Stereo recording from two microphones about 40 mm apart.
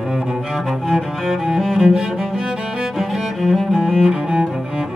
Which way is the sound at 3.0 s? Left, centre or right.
Centre.